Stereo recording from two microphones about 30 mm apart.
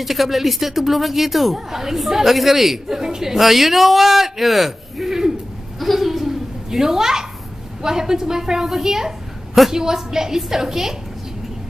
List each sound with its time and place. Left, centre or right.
0.0 s speech: centre
3.0 s speech: centre
5.8 s a sound: centre
7.8 s speech: centre